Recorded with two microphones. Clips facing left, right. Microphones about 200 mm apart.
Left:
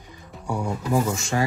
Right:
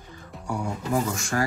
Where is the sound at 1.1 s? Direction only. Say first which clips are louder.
Left 2 dB; 25° left (ahead or behind).